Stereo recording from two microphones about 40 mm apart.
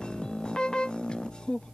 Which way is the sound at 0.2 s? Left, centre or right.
Centre.